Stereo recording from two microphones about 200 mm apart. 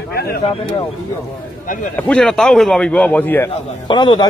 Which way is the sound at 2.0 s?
5° left (ahead or behind).